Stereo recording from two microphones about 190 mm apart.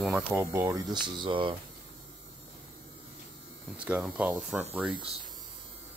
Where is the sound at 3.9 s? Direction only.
5° right (ahead or behind).